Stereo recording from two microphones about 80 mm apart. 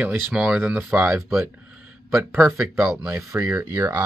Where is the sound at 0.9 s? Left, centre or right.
Right.